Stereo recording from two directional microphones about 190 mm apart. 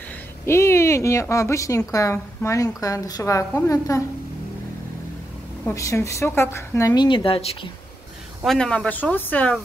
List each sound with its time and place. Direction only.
0.5 s a woman's voice: 15° left (ahead or behind)
5.7 s a woman's voice: 15° left (ahead or behind)
8.5 s a woman's voice: 5° left (ahead or behind)